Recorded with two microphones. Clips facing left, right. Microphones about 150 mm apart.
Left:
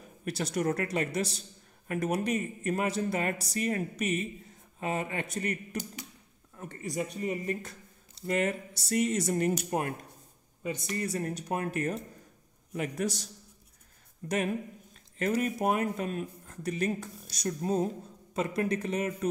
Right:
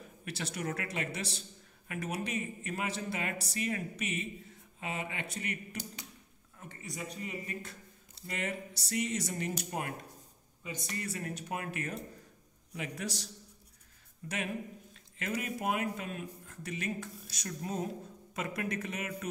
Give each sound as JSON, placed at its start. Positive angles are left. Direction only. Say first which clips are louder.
{"t": 0.2, "sound": "speech", "louder": "left 8 dB", "side_deg": 40}